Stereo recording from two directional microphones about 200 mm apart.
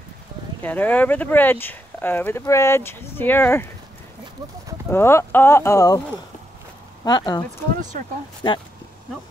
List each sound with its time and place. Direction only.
0.6 s speech: 10° left (ahead or behind)
4.9 s speech: 10° left (ahead or behind)
7.1 s speech: 20° left (ahead or behind)